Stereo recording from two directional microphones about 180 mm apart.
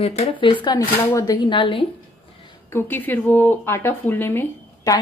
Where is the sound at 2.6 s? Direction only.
10° left (ahead or behind).